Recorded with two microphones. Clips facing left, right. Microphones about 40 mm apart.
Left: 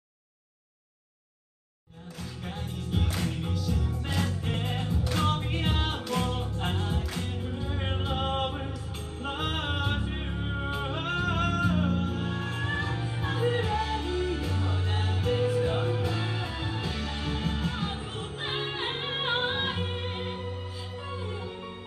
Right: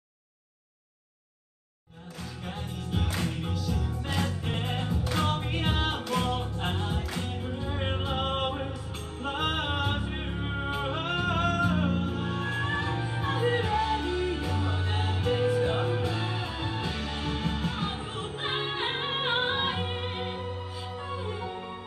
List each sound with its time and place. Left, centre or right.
2.4 s music: centre
14.0 s music: right